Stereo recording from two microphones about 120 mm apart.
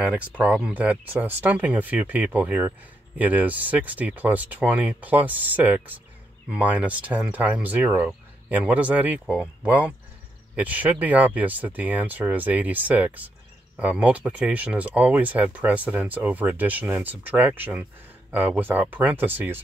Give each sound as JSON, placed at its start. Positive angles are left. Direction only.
{"t": 0.0, "sound": "speech", "side_deg": -10}